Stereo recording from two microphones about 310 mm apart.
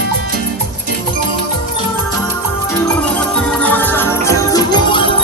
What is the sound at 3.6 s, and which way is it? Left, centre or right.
Music, centre.